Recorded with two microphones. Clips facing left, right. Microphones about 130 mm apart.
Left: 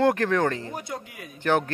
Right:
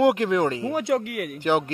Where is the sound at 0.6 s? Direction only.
90° right; by 1.4 s 75° right (ahead or behind).